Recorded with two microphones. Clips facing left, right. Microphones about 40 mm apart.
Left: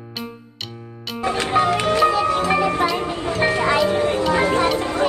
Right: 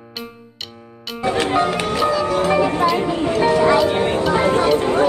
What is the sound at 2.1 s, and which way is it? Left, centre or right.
Music, left.